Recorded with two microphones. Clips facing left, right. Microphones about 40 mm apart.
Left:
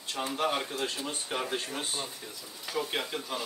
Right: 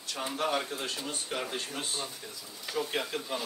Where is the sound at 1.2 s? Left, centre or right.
Centre.